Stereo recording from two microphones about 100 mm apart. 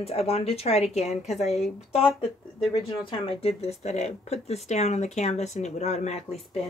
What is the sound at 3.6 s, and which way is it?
Speech, 90° left.